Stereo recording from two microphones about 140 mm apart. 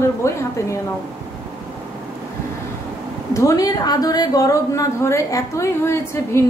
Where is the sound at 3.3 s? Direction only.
20° left (ahead or behind).